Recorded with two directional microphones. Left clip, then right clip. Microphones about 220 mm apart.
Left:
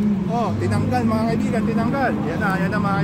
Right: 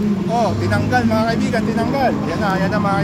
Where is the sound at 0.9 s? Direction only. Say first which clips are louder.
Right 5 dB; centre (ahead or behind).